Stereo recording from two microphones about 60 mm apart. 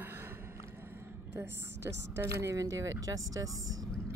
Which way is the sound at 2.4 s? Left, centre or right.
Right.